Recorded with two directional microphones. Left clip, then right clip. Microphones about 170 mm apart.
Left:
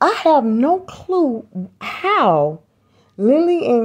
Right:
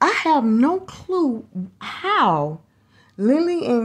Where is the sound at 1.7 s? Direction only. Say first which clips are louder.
Left 3 dB; 35° left (ahead or behind).